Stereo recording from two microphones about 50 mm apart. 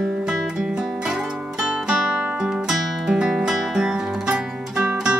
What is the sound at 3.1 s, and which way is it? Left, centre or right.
Music, centre.